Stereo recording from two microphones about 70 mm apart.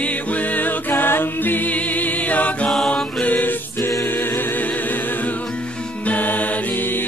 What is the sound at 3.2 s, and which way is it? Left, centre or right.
Music, left.